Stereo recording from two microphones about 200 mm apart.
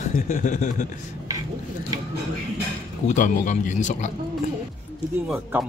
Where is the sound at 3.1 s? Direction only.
40° left (ahead or behind).